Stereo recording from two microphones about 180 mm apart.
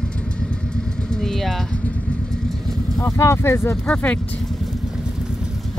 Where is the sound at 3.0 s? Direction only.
15° left (ahead or behind).